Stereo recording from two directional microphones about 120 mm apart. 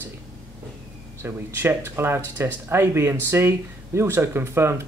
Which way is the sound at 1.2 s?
20° right (ahead or behind).